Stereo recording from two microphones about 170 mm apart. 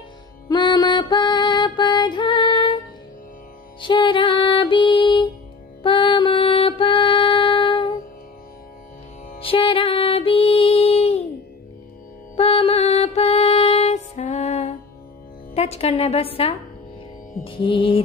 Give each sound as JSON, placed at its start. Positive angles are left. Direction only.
{"t": 0.5, "sound": "music", "side_deg": 25}
{"t": 3.8, "sound": "music", "side_deg": 30}
{"t": 9.4, "sound": "music", "side_deg": 30}
{"t": 12.4, "sound": "music", "side_deg": 35}
{"t": 15.5, "sound": "a woman's voice", "side_deg": 35}
{"t": 17.5, "sound": "music", "side_deg": 30}